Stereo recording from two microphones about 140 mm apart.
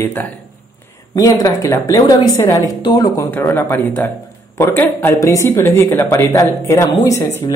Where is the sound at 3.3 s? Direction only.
15° left (ahead or behind).